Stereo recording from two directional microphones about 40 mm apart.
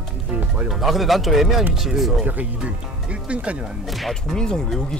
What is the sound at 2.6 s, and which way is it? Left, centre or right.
Speech, right.